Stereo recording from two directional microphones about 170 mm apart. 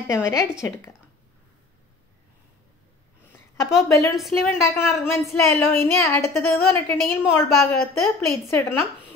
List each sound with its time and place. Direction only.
0.1 s a woman's voice: 20° left (ahead or behind)
3.3 s a woman's voice: 20° left (ahead or behind)
4.1 s a woman's voice: centre (ahead or behind)
4.5 s a woman's voice: 15° left (ahead or behind)